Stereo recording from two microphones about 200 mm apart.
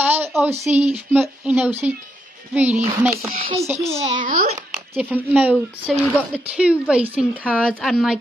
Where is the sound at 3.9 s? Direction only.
30° right (ahead or behind).